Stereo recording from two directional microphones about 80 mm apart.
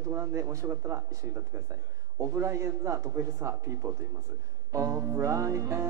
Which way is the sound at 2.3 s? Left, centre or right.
Right.